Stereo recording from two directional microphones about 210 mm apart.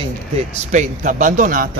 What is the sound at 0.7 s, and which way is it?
Speech, 40° right (ahead or behind).